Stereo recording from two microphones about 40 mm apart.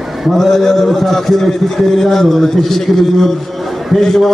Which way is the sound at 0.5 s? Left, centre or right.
Centre.